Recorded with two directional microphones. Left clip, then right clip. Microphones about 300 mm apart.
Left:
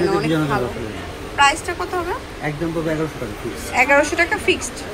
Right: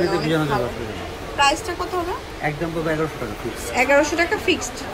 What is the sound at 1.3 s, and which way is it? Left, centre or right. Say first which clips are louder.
Speech: left 3 dB; centre.